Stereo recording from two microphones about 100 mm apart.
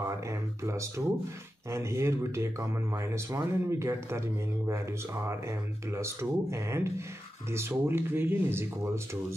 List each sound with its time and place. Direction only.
0.0 s speech: 30° right (ahead or behind)